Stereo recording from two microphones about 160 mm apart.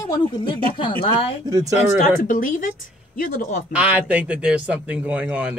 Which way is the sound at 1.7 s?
55° left (ahead or behind).